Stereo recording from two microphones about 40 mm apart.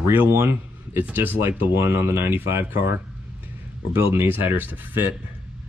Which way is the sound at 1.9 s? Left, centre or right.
Right.